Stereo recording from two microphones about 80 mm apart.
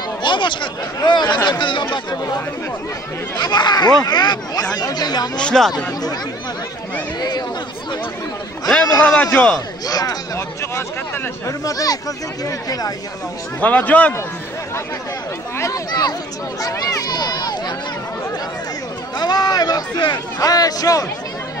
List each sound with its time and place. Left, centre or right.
0.2 s speech: left
3.3 s speech: left
5.4 s a man's voice: centre
7.2 s chatter: left
9.0 s a man's voice: centre
9.8 s speech: left
11.4 s speech: left
13.6 s a man's voice: centre
15.5 s a sound: left
15.9 s speech: left
19.1 s speech: left